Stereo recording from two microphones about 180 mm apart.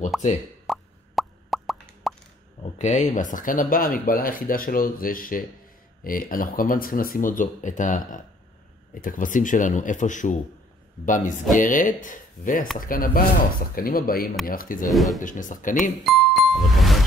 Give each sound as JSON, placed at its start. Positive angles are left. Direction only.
{"t": 0.1, "sound": "speech", "side_deg": 0}
{"t": 0.7, "sound": "plop", "side_deg": 0}
{"t": 2.8, "sound": "speech", "side_deg": 40}
{"t": 14.9, "sound": "speech", "side_deg": 0}
{"t": 15.1, "sound": "speech", "side_deg": 45}
{"t": 16.0, "sound": "music", "side_deg": 0}